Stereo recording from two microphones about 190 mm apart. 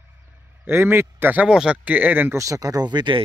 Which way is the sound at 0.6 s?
10° right (ahead or behind).